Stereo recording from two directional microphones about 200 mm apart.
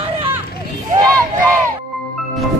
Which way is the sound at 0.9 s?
15° right (ahead or behind).